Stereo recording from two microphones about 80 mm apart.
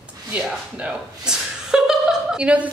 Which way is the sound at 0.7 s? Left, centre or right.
Centre.